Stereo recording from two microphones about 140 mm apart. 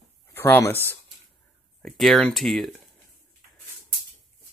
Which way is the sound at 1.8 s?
Centre (ahead or behind).